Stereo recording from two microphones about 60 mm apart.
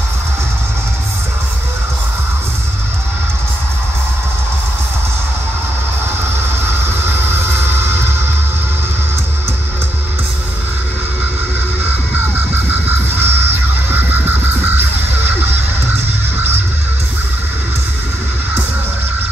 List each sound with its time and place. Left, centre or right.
7.1 s music: right
13.2 s music: right